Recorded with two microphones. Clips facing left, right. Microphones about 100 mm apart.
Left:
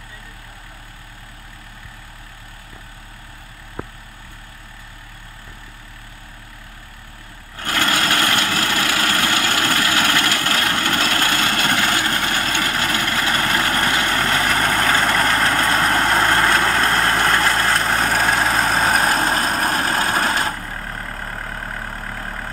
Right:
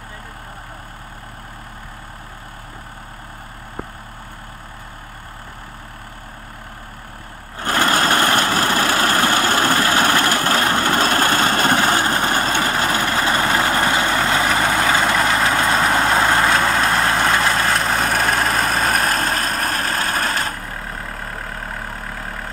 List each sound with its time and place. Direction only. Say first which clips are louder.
7.5 s vehicle: right 3 dB; 35° right (ahead or behind); by 19.8 s 10° left (ahead or behind)
19.8 s vehicle: left 2 dB; 20° left (ahead or behind)
20.6 s vehicle: even; 5° right (ahead or behind)